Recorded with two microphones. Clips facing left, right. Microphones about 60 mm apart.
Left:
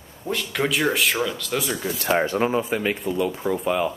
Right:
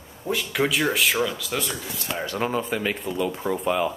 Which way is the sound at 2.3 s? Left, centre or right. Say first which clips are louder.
Left 3 dB; centre.